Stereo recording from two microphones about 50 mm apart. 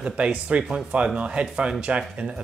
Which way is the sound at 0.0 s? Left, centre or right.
Right.